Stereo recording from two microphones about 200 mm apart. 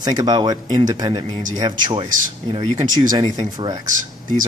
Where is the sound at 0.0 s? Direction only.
20° right (ahead or behind).